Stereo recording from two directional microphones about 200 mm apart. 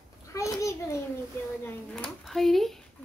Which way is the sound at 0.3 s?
15° left (ahead or behind).